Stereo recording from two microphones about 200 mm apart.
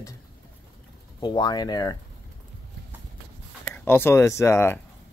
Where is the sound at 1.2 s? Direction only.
20° left (ahead or behind).